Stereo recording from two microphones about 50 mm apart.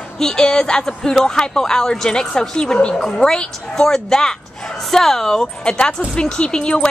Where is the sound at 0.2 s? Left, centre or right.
Centre.